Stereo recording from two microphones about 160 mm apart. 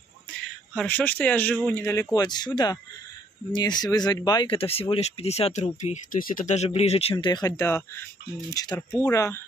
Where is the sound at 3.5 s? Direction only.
25° left (ahead or behind).